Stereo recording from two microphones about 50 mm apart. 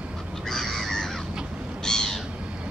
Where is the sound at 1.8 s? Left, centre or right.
Centre.